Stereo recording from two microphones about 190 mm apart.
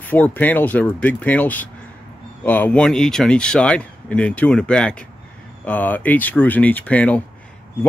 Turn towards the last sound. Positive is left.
turn(degrees=5)  # may be behind; listen again after turning